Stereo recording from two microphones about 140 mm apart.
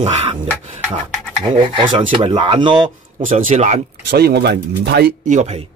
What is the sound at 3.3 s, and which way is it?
Speech, 55° right (ahead or behind).